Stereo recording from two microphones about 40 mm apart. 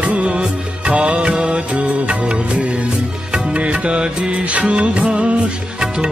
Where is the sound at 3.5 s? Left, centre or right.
Right.